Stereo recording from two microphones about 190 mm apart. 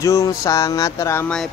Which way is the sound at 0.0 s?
15° left (ahead or behind).